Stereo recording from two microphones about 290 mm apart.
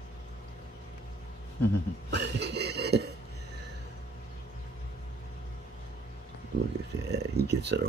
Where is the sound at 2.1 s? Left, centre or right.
Right.